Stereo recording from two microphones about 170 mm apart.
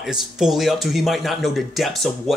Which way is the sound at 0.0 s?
Centre (ahead or behind).